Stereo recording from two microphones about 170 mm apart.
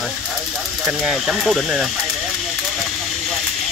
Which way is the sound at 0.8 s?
5° right (ahead or behind).